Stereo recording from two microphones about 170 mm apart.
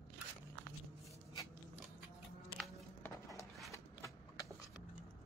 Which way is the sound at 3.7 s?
15° left (ahead or behind).